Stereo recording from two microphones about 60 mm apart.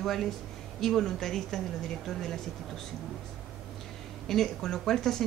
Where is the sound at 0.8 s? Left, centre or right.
Centre.